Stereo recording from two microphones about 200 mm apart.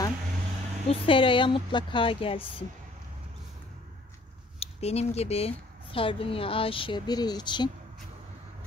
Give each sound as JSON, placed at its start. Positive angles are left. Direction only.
{"t": 0.8, "sound": "a woman's voice", "side_deg": 25}
{"t": 4.6, "sound": "a woman's voice", "side_deg": 30}